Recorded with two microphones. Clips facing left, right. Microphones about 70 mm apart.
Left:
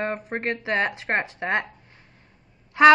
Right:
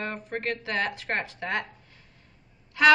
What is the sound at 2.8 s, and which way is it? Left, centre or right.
Honk, left.